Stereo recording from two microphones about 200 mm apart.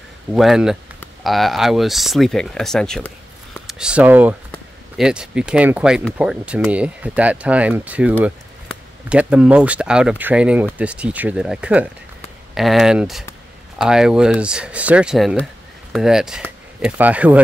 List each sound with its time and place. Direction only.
0.3 s speech: centre (ahead or behind)